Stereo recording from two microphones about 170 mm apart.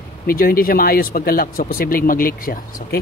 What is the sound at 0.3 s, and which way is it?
Speech, 60° left (ahead or behind).